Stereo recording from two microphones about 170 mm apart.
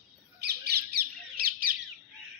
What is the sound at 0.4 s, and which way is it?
Bird, 70° right (ahead or behind).